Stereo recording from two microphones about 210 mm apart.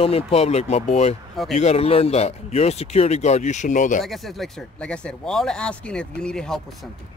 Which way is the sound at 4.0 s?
Centre (ahead or behind).